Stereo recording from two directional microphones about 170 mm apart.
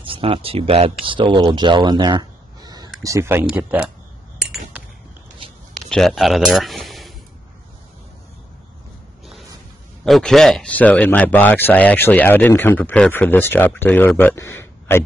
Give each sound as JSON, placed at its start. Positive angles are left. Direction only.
{"t": 0.0, "sound": "speech", "side_deg": -35}
{"t": 5.9, "sound": "speech", "side_deg": 0}
{"t": 10.0, "sound": "speech", "side_deg": 0}